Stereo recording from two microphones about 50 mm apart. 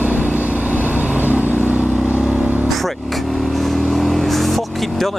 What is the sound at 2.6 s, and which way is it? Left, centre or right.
Vehicle, centre.